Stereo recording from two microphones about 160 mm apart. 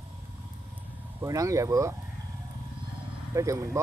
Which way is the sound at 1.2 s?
20° right (ahead or behind).